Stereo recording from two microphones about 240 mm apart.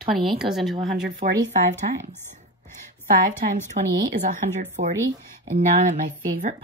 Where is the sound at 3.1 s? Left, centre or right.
Right.